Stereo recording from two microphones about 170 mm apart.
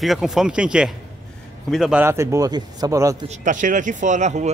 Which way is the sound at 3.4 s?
50° right (ahead or behind).